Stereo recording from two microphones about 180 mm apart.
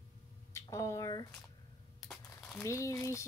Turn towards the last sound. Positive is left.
turn(degrees=15)  # may be behind; listen again after turning